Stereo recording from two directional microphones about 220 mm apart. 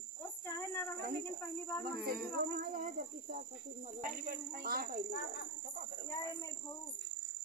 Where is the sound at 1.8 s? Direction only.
40° right (ahead or behind).